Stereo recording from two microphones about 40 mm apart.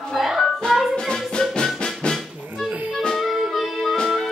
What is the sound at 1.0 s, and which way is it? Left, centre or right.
Music, centre.